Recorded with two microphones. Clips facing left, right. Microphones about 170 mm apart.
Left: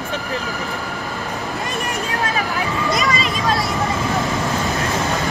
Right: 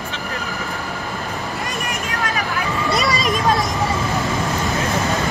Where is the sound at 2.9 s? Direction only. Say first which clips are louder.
Right 1 dB; 40° right (ahead or behind).